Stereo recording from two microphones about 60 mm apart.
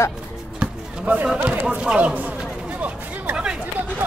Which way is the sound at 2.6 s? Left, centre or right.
Right.